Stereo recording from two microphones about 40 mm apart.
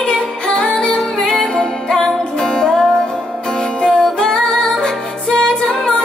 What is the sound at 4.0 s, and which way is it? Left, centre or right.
Music, centre.